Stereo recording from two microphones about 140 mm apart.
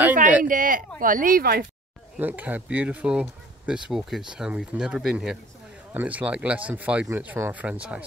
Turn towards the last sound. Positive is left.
turn(degrees=-10)  # may be behind; listen again after turning